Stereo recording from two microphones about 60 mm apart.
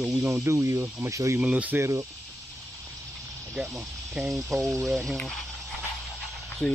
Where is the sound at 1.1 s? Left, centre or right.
Right.